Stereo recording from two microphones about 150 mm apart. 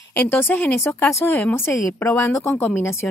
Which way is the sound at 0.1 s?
10° left (ahead or behind).